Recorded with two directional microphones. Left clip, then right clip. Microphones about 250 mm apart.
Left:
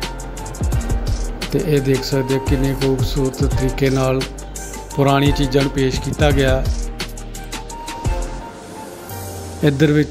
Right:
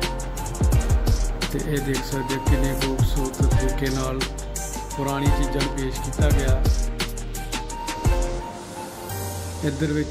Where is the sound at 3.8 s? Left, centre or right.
Left.